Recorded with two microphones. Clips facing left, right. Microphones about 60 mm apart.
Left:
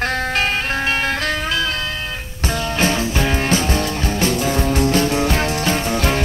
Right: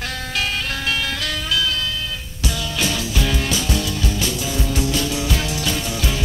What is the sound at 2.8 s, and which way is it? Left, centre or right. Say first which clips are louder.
Music: left 4 dB; left.